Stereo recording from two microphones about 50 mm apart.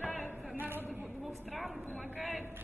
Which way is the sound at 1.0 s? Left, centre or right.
Centre.